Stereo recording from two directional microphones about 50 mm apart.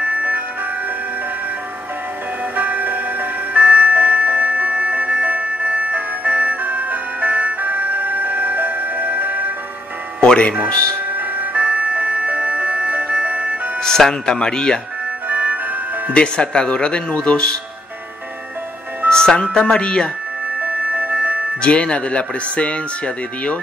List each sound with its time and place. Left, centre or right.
0.0 s music: right
2.5 s music: right
10.2 s music: left
11.1 s music: right
13.7 s speech: centre
15.2 s music: right
16.1 s speech: left
19.0 s speech: centre
20.6 s music: right
21.5 s speech: left